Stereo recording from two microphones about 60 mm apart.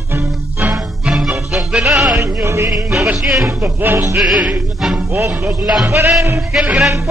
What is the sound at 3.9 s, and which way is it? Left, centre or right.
Speech, right.